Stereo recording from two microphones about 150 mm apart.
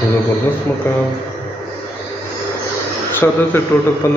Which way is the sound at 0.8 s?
15° left (ahead or behind).